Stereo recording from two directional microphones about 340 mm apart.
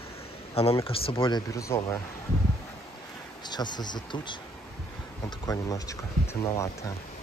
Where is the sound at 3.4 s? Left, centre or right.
Centre.